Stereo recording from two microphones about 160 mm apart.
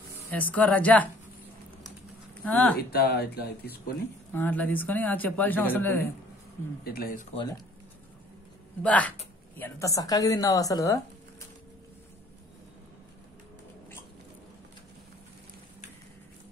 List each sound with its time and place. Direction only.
0.3 s speech: 10° left (ahead or behind)
2.4 s speech: 10° left (ahead or behind)
2.8 s speech: 90° left
4.3 s speech: 10° left (ahead or behind)
6.8 s speech: 70° left (ahead or behind)
8.8 s speech: 10° left (ahead or behind)
9.6 s a woman's voice: 20° left (ahead or behind)